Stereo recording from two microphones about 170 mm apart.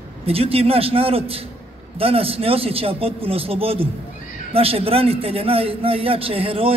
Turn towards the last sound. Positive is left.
turn(degrees=-35)  # may be behind; listen again after turning